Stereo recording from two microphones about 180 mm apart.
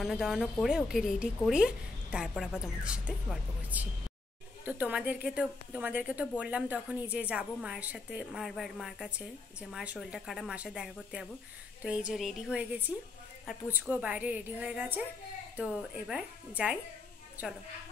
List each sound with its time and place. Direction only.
0.0 s a woman's voice: centre (ahead or behind)